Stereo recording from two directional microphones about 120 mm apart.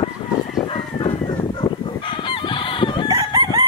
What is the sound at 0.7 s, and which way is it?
Bird, 45° left (ahead or behind).